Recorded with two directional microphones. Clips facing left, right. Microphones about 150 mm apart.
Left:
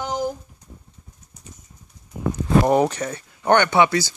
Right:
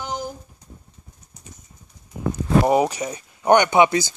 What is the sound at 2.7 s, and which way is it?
Speech, 10° right (ahead or behind).